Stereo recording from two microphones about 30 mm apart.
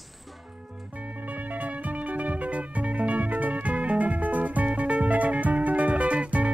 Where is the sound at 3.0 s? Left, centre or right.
Right.